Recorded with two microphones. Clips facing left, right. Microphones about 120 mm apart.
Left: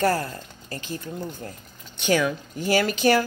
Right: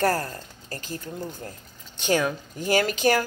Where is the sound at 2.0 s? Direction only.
40° right (ahead or behind).